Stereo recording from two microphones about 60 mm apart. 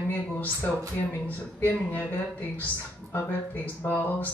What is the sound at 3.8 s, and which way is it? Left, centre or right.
Speech, left.